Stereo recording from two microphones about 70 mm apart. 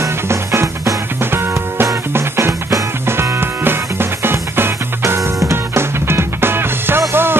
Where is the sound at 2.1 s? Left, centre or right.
Right.